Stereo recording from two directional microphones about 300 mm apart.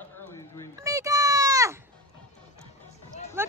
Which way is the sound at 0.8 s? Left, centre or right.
Centre.